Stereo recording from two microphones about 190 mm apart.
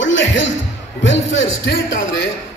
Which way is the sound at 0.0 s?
75° left (ahead or behind).